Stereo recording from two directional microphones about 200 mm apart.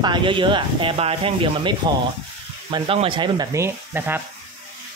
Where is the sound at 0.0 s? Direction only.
25° right (ahead or behind).